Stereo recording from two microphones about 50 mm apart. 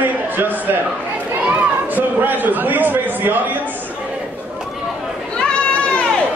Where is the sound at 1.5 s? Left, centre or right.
Right.